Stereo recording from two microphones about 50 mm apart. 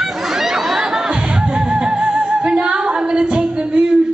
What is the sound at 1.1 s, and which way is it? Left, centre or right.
Music, centre.